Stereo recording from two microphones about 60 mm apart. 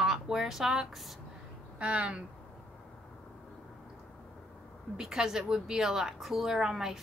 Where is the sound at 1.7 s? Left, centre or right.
Centre.